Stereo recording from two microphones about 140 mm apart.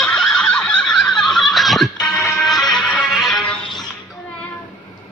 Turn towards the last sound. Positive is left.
turn(degrees=5)  # may be behind; listen again after turning